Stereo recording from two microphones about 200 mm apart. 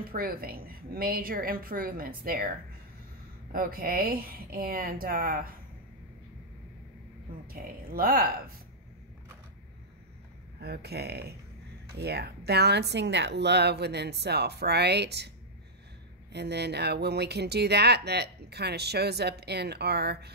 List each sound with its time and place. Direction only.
0.0 s a woman's voice: 45° right (ahead or behind)
3.5 s a woman's voice: 45° right (ahead or behind)
7.4 s a woman's voice: 45° right (ahead or behind)
10.6 s a woman's voice: 55° right (ahead or behind)